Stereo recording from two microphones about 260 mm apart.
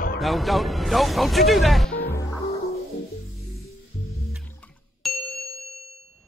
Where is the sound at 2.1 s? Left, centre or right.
Centre.